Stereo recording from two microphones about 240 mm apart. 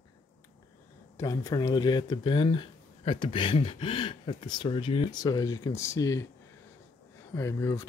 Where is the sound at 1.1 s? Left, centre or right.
Centre.